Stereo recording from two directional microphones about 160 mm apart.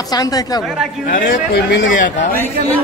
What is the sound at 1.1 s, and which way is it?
A man's voice, 70° left (ahead or behind).